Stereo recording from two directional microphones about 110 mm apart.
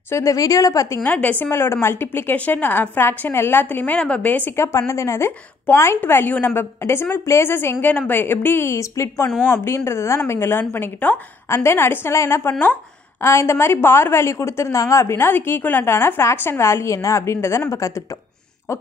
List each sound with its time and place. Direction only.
0.1 s a woman's voice: 30° left (ahead or behind)
1.0 s a woman's voice: 15° left (ahead or behind)